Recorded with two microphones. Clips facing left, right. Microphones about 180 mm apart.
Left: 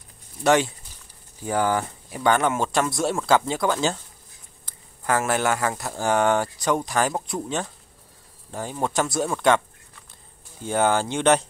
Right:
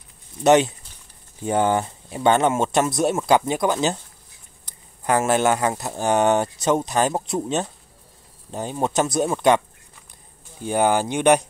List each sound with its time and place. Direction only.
0.4 s speech: 20° right (ahead or behind)
10.6 s speech: 15° right (ahead or behind)